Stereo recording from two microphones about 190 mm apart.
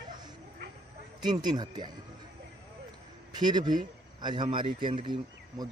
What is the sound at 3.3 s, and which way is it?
Speech, 20° right (ahead or behind).